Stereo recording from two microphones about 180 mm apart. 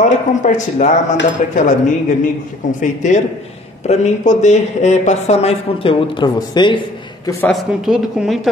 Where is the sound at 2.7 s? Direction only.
40° left (ahead or behind); by 7.4 s 25° left (ahead or behind).